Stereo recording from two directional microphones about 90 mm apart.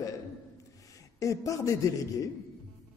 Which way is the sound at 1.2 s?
40° left (ahead or behind).